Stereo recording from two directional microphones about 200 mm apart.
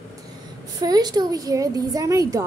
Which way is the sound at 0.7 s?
20° right (ahead or behind).